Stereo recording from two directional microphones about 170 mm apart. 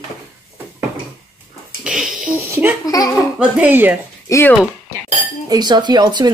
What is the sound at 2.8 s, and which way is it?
Speech, 20° left (ahead or behind).